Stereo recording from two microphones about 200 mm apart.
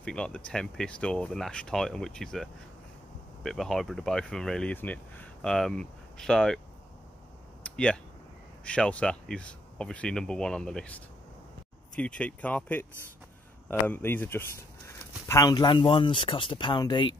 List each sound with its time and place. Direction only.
0.0 s speech: 5° left (ahead or behind)
7.6 s a sound: 5° left (ahead or behind)
8.6 s speech: 5° left (ahead or behind); by 17.1 s 25° left (ahead or behind)